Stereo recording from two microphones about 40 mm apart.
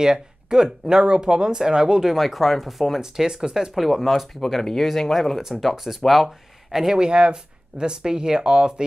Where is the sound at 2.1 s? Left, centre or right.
Centre.